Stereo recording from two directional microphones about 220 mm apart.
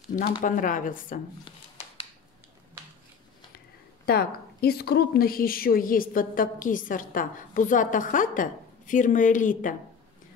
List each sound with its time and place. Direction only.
0.4 s a woman's voice: 35° left (ahead or behind)
4.0 s a woman's voice: 45° left (ahead or behind)